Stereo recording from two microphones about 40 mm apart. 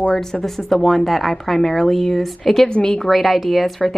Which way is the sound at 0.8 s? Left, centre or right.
Centre.